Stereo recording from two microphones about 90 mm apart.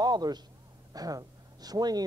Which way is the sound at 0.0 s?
50° right (ahead or behind).